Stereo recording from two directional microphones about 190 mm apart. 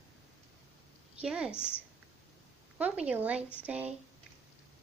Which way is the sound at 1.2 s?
5° right (ahead or behind).